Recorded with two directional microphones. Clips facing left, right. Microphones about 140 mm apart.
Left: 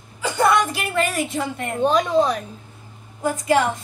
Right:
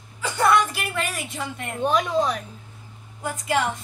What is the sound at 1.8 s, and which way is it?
A woman's voice, 30° left (ahead or behind).